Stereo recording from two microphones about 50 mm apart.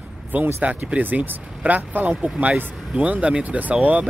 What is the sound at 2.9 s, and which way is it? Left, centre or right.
Speech, right.